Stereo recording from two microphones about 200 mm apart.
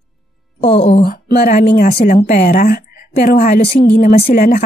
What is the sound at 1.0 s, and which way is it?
A woman's voice, 50° left (ahead or behind).